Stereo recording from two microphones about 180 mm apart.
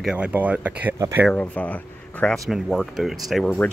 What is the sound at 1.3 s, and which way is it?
Speech, 10° left (ahead or behind).